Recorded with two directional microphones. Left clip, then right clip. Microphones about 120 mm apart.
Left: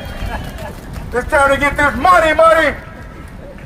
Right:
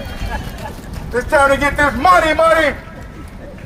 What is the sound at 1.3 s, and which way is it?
A man's voice, 25° left (ahead or behind).